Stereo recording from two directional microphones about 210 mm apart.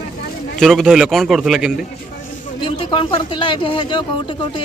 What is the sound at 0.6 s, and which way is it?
A man's voice, centre (ahead or behind).